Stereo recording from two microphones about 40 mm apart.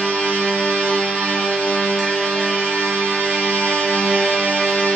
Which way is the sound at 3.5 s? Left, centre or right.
Left.